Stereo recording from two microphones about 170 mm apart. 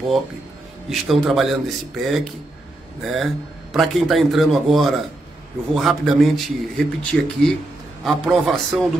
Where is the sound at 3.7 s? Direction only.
Centre (ahead or behind).